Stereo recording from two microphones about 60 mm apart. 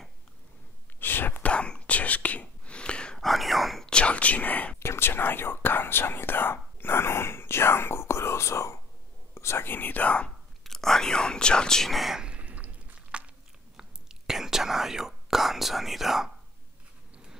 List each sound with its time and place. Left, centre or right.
0.9 s whispering: left
1.4 s whispering: centre
3.2 s whispering: centre
3.8 s whispering: centre
4.7 s whispering: left
10.6 s whispering: centre
12.2 s a sound: centre
13.7 s whispering: centre